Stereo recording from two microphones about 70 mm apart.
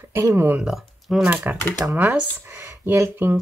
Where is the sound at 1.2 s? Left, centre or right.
Right.